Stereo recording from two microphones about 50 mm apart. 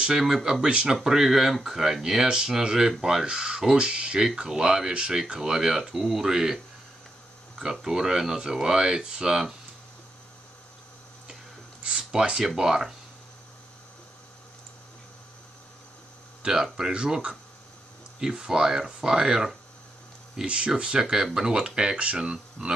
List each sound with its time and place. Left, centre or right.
0.2 s speech: centre
0.9 s speech: centre
7.8 s speech: centre
12.0 s speech: centre
16.4 s speech: centre
16.9 s speech: right